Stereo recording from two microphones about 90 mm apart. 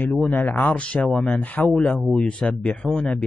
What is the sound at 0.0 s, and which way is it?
Speech, 15° left (ahead or behind).